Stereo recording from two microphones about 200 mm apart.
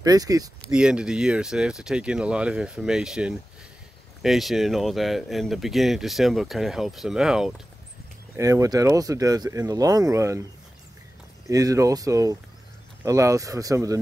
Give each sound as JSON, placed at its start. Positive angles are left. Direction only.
{"t": 0.0, "sound": "speech", "side_deg": -20}
{"t": 0.7, "sound": "speech", "side_deg": -5}
{"t": 8.4, "sound": "speech", "side_deg": -15}
{"t": 11.4, "sound": "speech", "side_deg": -15}